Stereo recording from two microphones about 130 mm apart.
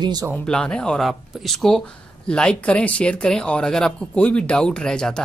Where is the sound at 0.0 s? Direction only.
30° right (ahead or behind).